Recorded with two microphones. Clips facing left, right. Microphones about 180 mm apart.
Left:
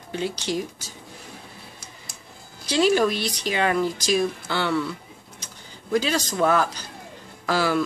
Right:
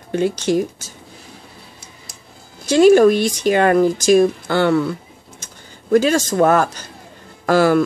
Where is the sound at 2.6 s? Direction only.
50° right (ahead or behind).